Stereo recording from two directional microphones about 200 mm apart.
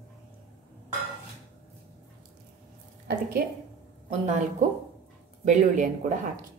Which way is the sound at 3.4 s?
45° right (ahead or behind).